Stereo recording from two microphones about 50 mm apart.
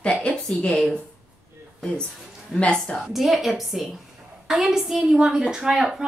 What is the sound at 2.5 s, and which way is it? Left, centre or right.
A woman's voice, centre.